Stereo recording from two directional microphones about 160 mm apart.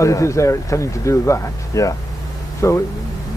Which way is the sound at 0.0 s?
20° left (ahead or behind).